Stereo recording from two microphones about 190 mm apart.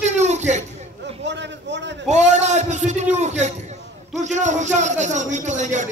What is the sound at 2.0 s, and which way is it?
A man's voice, 40° right (ahead or behind).